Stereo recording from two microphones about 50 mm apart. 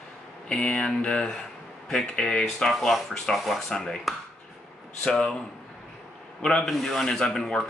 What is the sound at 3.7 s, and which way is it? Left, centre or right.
Speech, centre.